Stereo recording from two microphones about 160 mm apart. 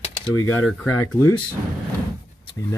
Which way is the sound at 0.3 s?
15° left (ahead or behind).